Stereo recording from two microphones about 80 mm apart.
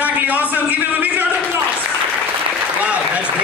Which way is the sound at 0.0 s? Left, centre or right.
Centre.